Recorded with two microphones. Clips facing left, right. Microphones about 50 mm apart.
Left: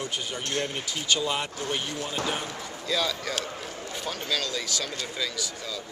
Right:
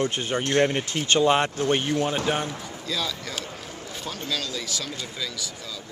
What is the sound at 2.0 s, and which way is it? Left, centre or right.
Speech, right.